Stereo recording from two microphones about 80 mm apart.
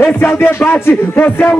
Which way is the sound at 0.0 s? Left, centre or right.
Left.